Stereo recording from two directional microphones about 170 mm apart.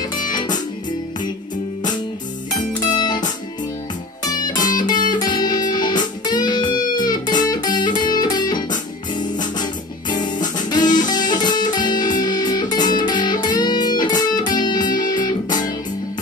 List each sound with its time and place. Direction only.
0.3 s music: 25° left (ahead or behind)
2.8 s music: 25° left (ahead or behind)
4.7 s music: 25° left (ahead or behind)